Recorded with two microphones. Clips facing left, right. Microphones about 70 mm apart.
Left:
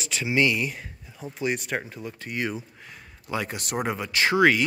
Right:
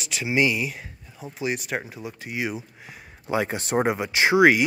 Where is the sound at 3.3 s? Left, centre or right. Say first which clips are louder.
Right 5 dB; right.